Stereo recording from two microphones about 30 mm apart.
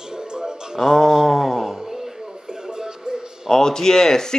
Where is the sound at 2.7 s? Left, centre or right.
Centre.